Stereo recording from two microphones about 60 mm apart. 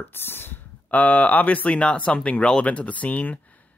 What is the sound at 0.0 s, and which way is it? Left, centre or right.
Speech, left.